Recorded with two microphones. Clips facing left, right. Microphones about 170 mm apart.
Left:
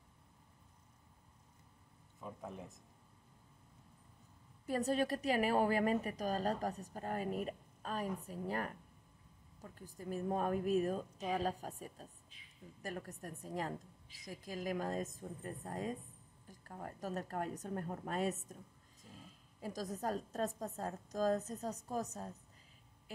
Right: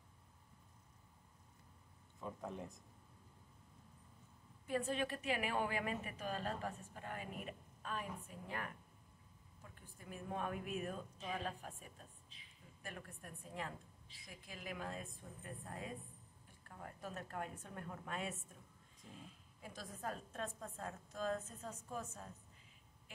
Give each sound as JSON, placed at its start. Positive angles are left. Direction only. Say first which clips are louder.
{"t": 2.1, "sound": "speech", "louder": "right 1 dB", "side_deg": 5}
{"t": 4.6, "sound": "a woman's voice", "louder": "left 5 dB", "side_deg": 40}